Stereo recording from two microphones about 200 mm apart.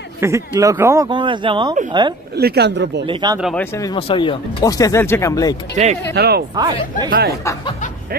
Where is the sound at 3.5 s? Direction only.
15° left (ahead or behind).